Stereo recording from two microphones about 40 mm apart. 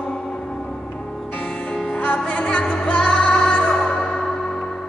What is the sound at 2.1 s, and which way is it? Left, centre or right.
Music, left.